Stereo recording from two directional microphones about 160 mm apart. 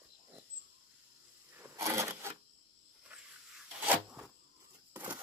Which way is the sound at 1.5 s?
15° right (ahead or behind).